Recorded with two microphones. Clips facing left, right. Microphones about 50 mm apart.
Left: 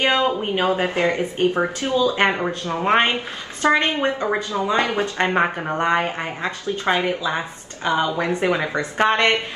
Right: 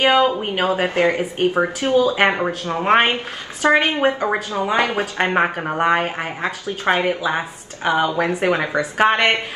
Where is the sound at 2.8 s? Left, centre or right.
Centre.